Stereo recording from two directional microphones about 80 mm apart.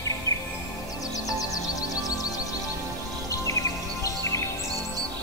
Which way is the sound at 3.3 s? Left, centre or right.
Left.